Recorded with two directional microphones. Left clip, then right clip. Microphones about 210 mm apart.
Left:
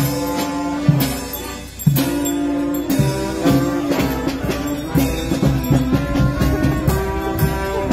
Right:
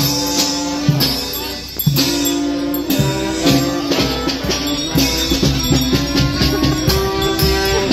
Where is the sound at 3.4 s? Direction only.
45° left (ahead or behind).